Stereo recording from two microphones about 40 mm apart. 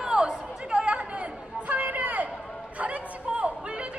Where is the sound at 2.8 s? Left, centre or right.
Right.